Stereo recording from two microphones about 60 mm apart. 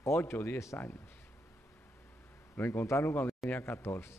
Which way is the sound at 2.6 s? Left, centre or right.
Left.